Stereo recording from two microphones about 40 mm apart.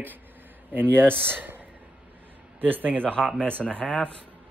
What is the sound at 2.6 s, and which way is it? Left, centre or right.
Speech, right.